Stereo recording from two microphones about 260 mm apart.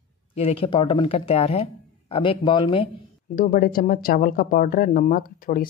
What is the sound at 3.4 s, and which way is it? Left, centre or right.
Speech, left.